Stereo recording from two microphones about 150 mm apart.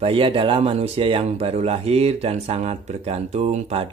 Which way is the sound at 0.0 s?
35° right (ahead or behind).